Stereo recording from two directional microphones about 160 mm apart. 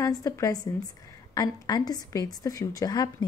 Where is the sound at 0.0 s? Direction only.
20° left (ahead or behind).